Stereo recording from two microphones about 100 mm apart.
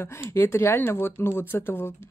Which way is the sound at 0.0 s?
25° left (ahead or behind).